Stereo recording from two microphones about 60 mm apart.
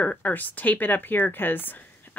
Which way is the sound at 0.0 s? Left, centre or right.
Left.